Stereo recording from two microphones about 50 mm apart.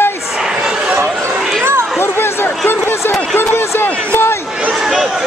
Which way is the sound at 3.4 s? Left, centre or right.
Left.